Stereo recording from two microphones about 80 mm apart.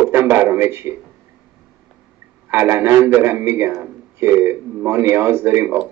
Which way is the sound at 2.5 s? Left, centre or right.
Right.